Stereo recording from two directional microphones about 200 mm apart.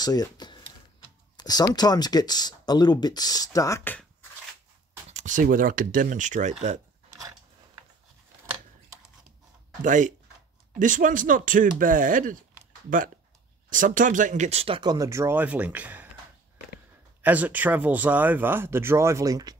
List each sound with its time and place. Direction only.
0.0 s a sound: 20° left (ahead or behind)
1.3 s speech: 20° left (ahead or behind)
5.1 s speech: 40° right (ahead or behind)
9.8 s speech: 40° right (ahead or behind)
13.7 s speech: 40° right (ahead or behind); by 16.1 s 5° right (ahead or behind)
17.2 s speech: 10° right (ahead or behind)